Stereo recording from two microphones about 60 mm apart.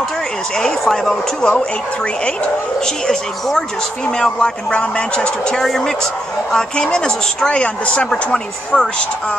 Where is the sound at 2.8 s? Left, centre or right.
Centre.